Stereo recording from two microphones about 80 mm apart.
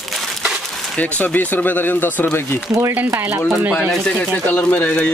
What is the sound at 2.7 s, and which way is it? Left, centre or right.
Speech, right.